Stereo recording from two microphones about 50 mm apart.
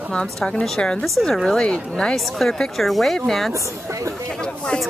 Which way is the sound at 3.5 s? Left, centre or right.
Right.